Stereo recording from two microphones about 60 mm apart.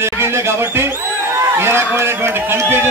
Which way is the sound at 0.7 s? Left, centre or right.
Right.